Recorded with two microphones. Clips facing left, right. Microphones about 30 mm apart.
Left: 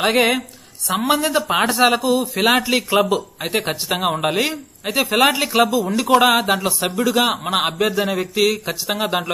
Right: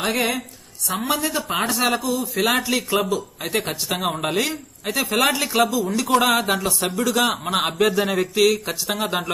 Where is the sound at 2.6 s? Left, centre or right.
Left.